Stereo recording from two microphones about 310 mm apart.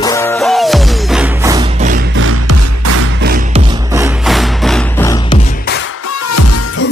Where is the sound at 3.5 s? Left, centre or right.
Centre.